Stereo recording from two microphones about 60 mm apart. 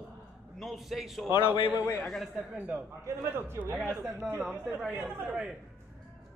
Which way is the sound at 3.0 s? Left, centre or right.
Right.